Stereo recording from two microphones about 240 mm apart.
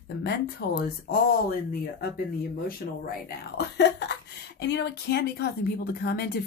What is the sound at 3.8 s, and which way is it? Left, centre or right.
Speech, left.